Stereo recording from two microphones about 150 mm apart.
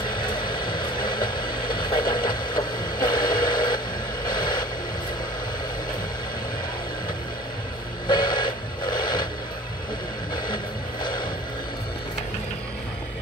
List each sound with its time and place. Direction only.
0.0 s vehicle: 30° left (ahead or behind)
8.1 s a sound: 30° left (ahead or behind)
10.3 s music: 30° left (ahead or behind)